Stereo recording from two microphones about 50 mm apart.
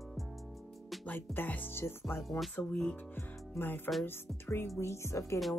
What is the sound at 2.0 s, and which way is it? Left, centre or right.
Speech, centre.